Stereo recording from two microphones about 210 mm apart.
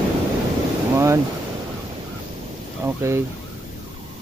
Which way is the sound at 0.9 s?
15° right (ahead or behind).